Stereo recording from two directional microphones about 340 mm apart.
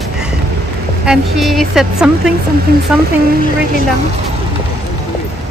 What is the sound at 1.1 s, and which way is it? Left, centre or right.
Speech, centre.